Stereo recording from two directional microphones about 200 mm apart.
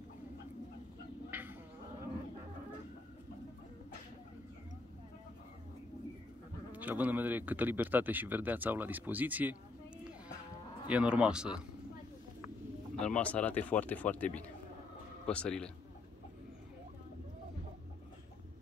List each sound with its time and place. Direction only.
1.3 s a sound: 10° right (ahead or behind)
6.7 s speech: 10° right (ahead or behind)
10.9 s speech: 5° right (ahead or behind)
13.0 s speech: 5° left (ahead or behind)